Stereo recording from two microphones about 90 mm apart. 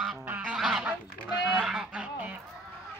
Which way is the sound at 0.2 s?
20° right (ahead or behind).